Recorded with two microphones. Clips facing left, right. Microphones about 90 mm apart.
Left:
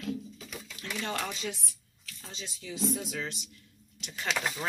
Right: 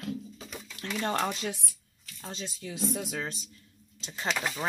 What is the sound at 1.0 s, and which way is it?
Speech, 40° right (ahead or behind).